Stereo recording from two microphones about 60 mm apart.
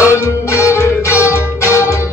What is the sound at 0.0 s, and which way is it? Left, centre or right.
Music, left.